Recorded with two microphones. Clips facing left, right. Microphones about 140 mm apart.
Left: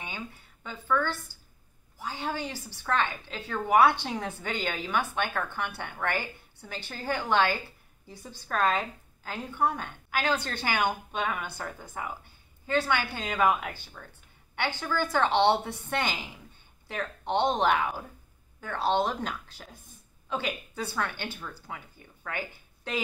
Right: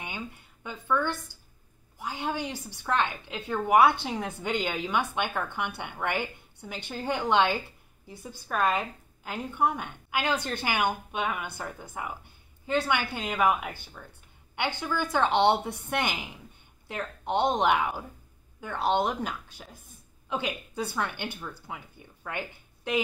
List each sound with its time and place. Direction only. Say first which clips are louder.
0.7 s a woman's voice: even; 15° right (ahead or behind)